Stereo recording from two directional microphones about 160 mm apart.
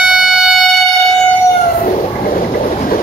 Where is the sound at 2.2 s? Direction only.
60° left (ahead or behind).